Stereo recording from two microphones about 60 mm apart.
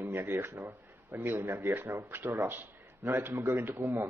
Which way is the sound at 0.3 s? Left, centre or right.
Right.